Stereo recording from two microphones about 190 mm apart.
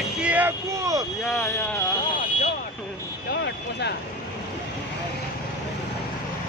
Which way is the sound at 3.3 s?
65° left (ahead or behind).